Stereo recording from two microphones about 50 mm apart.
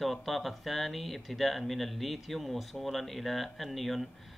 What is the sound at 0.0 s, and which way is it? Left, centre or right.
A man's voice, centre.